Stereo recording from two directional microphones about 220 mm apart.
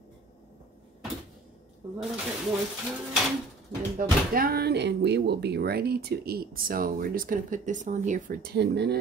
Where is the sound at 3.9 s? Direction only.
40° right (ahead or behind).